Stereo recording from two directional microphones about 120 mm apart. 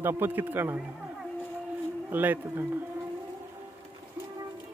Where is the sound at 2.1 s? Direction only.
15° right (ahead or behind).